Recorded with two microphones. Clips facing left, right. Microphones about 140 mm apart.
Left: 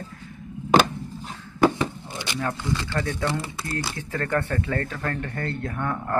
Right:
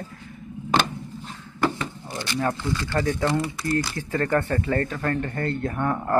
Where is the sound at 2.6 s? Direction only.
20° left (ahead or behind).